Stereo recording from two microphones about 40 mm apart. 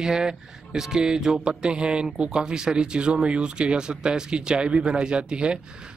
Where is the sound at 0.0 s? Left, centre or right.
Centre.